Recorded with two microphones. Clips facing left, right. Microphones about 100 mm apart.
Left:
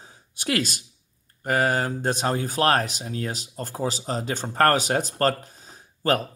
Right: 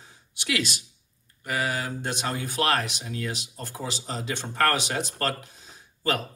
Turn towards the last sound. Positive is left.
turn(degrees=45)  # may be behind; listen again after turning